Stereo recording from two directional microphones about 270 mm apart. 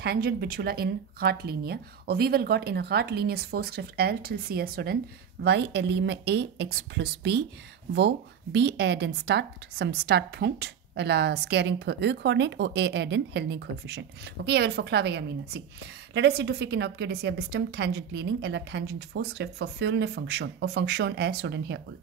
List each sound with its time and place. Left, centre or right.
0.0 s speech: right